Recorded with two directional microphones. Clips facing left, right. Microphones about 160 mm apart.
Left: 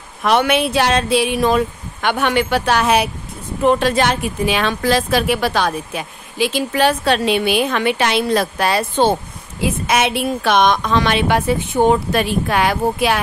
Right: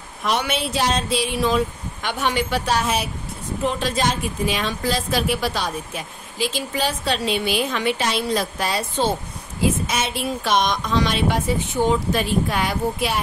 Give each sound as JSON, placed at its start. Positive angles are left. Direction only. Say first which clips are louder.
{"t": 0.2, "sound": "a woman's voice", "louder": "left 8 dB", "side_deg": 65}